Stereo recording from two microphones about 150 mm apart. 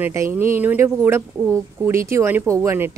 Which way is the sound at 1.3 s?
5° left (ahead or behind).